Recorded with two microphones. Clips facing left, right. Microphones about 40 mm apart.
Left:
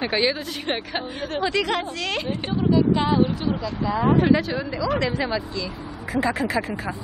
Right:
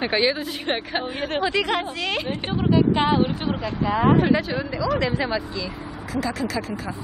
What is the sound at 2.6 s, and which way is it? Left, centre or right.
Speech, right.